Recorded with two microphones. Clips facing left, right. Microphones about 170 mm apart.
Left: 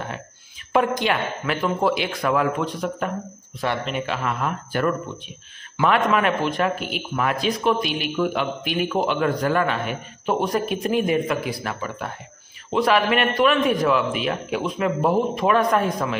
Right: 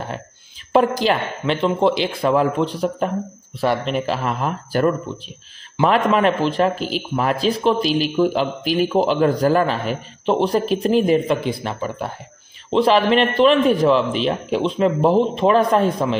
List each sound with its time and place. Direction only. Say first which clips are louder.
0.7 s a man's voice: right 4 dB; 30° right (ahead or behind)
4.1 s a man's voice: right 3 dB; 35° right (ahead or behind)